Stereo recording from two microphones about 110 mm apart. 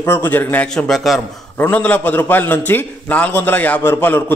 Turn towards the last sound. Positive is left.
turn(degrees=20)  # may be behind; listen again after turning